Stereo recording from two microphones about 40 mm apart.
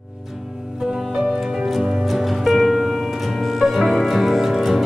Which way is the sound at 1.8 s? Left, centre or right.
Centre.